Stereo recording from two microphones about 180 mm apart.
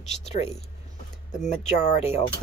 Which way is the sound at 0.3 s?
35° left (ahead or behind).